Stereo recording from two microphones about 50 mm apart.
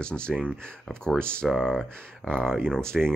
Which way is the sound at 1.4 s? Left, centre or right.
Centre.